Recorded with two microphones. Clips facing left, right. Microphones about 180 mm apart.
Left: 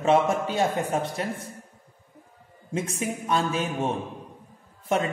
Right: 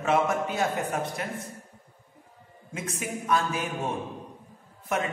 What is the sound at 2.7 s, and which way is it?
Speech, 30° left (ahead or behind).